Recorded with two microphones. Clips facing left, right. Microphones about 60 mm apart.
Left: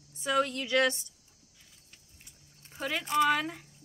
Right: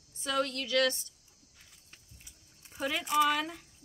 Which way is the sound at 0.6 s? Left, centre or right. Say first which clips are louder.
Even; left.